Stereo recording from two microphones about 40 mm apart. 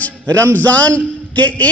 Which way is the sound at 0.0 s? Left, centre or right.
Left.